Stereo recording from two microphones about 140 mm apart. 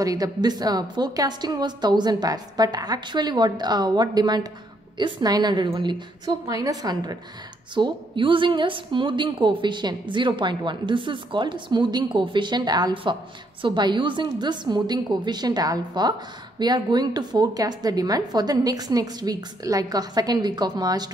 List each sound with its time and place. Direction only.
0.0 s a woman's voice: 25° right (ahead or behind)